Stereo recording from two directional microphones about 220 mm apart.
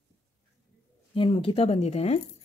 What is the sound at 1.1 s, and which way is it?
Speech, 25° left (ahead or behind).